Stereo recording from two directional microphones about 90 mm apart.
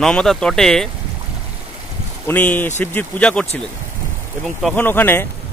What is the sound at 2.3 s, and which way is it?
Speech, 20° left (ahead or behind).